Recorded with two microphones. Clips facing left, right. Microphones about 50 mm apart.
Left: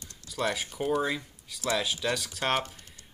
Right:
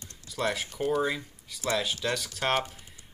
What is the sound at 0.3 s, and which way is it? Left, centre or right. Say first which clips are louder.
Speech: even; centre.